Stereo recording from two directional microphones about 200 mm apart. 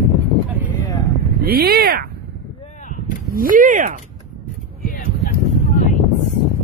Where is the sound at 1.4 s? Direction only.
50° right (ahead or behind).